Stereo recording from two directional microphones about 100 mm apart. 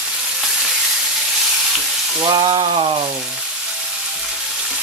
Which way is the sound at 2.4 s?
55° right (ahead or behind).